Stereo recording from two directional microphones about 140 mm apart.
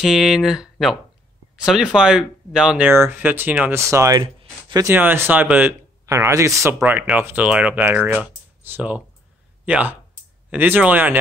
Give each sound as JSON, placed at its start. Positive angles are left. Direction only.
{"t": 0.0, "sound": "speech", "side_deg": -5}
{"t": 4.2, "sound": "a sound", "side_deg": -35}
{"t": 4.8, "sound": "speech", "side_deg": -15}